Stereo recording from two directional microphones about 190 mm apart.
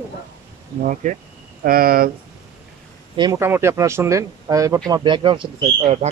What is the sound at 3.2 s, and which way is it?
Speech, 15° right (ahead or behind).